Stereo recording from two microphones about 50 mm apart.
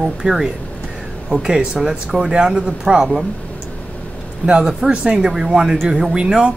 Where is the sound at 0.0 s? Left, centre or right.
Centre.